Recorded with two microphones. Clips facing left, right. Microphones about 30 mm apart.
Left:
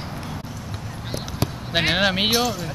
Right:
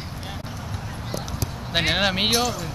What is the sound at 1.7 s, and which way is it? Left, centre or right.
Speech, centre.